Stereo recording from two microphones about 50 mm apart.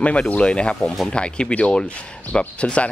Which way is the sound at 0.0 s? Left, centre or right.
Left.